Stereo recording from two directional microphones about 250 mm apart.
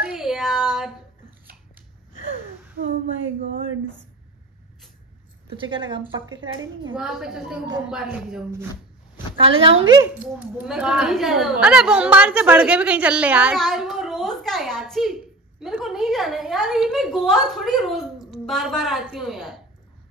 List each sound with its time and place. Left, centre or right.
0.0 s child singing: centre
2.8 s a sound: right
5.6 s a woman's voice: centre
7.0 s a woman's voice: centre
9.4 s a woman's voice: right
10.0 s a woman's voice: centre